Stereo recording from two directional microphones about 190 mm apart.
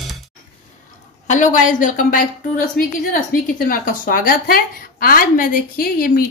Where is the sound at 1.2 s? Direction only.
40° left (ahead or behind).